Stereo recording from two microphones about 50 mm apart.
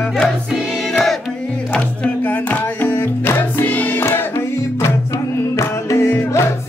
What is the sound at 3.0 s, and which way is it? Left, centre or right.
Music, left.